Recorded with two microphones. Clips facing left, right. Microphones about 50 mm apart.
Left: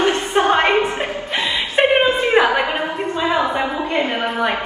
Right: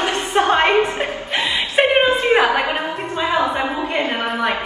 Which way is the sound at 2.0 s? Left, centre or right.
Right.